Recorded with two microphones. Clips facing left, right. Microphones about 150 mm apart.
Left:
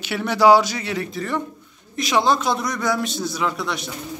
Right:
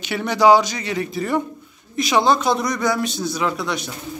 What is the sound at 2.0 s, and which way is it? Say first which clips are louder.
A man's voice: right 2 dB; centre (ahead or behind).